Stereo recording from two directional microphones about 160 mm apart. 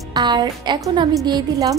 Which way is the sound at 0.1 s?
25° right (ahead or behind).